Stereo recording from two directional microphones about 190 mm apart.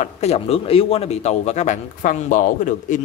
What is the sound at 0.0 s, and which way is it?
A man's voice, 35° left (ahead or behind).